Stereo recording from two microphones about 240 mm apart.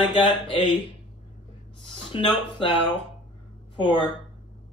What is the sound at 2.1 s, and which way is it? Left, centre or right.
Speech, left.